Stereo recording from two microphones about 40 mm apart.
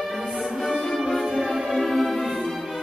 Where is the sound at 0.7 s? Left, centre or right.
Centre.